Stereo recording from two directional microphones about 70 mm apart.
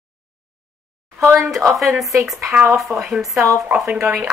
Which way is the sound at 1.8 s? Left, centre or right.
Centre.